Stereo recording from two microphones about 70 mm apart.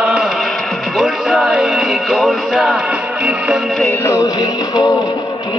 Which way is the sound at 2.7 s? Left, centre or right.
Centre.